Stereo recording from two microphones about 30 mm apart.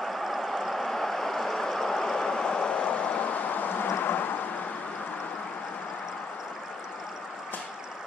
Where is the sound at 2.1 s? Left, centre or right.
Left.